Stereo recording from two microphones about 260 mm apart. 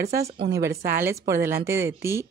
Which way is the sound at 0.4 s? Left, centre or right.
Centre.